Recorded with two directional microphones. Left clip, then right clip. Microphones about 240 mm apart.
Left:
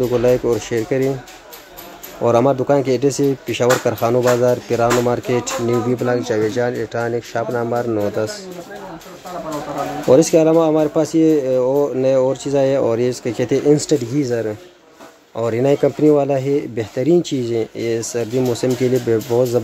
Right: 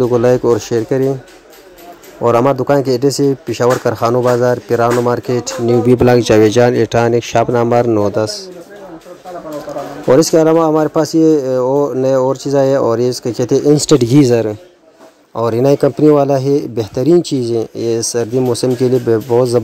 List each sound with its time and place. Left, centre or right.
0.0 s speech: right
2.2 s speech: centre
5.9 s speech: right
10.0 s speech: centre